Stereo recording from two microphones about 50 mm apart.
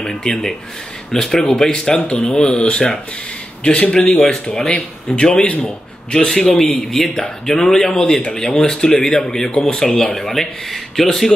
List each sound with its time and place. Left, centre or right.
0.0 s speech: centre
2.0 s speech: left
4.1 s speech: centre